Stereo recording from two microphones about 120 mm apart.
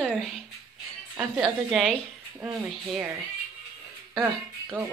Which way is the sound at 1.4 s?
Centre (ahead or behind).